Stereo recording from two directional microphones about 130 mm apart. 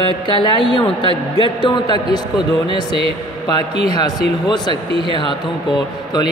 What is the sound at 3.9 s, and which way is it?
Speech, 30° left (ahead or behind).